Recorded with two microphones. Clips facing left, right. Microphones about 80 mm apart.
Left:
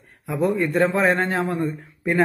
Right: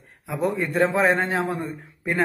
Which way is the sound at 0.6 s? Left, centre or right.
Centre.